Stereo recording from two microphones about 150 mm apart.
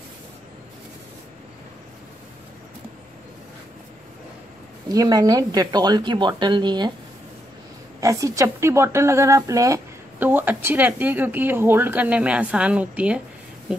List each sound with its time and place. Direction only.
4.8 s speech: 25° right (ahead or behind)
8.0 s a woman's voice: 20° right (ahead or behind)